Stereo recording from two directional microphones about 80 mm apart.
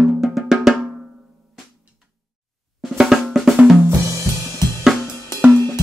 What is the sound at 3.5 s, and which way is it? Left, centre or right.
Drum kit, centre.